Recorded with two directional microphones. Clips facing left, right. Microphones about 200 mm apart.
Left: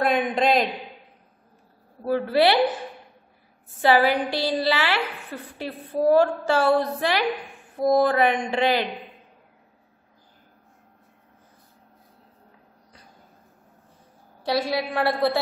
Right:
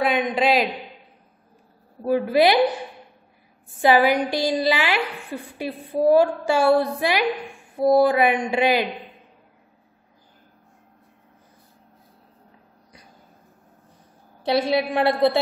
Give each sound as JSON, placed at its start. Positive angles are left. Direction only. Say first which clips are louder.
{"t": 0.0, "sound": "a sound", "louder": "right 1 dB", "side_deg": 0}
{"t": 2.0, "sound": "a woman's voice", "louder": "right 2 dB", "side_deg": -15}
{"t": 3.8, "sound": "a woman's voice", "louder": "right 2 dB", "side_deg": -15}
{"t": 14.4, "sound": "a woman's voice", "louder": "right 4 dB", "side_deg": -20}